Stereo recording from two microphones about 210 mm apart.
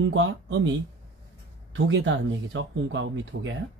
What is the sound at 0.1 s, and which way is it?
Speech, 65° right (ahead or behind).